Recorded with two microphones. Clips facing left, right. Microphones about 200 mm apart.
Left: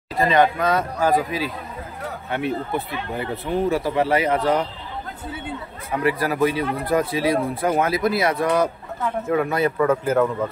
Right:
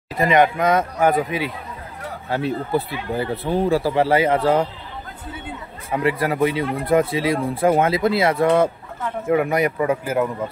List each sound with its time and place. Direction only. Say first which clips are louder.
0.2 s speech: right 1 dB; 20° right (ahead or behind)
6.0 s speech: even; 25° right (ahead or behind)